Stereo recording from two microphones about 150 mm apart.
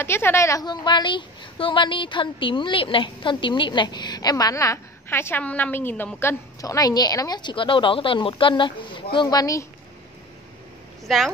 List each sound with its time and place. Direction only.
0.0 s a woman's voice: 15° left (ahead or behind)
11.1 s a woman's voice: centre (ahead or behind)